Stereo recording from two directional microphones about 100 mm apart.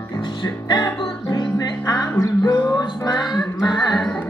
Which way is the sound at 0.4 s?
50° left (ahead or behind).